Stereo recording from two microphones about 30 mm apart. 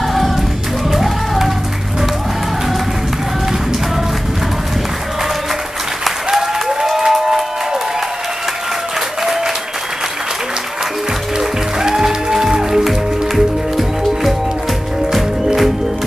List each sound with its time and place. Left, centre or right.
0.9 s a sound: centre
7.0 s music: centre
11.3 s music: right
13.7 s music: centre